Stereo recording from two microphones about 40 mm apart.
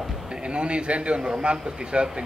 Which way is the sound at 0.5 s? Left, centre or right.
Right.